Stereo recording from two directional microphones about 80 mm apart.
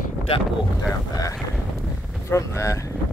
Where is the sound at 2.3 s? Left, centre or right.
Left.